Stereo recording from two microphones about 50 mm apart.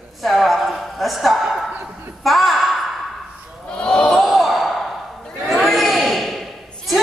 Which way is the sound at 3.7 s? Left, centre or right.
Left.